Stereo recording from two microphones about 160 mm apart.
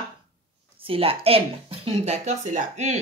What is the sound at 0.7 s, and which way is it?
A woman's voice, 35° right (ahead or behind).